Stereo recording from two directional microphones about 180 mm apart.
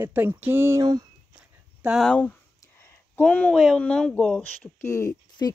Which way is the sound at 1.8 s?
Centre (ahead or behind).